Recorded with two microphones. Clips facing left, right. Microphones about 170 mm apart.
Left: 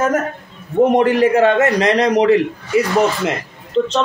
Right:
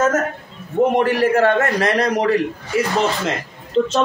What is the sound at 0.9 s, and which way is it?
A man's voice, 20° left (ahead or behind).